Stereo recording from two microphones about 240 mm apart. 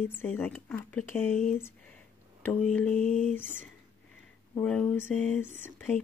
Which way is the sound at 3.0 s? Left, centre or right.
Left.